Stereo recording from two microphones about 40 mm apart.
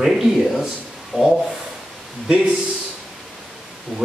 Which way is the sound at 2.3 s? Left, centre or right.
Right.